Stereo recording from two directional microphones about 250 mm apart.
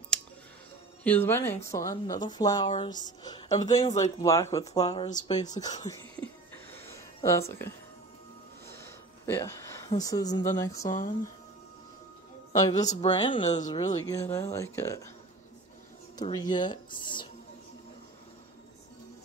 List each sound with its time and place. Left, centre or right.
1.0 s a woman's voice: centre
7.2 s a woman's voice: centre
8.6 s a sound: centre
10.6 s a woman's voice: centre
12.5 s a woman's voice: centre
16.2 s a woman's voice: centre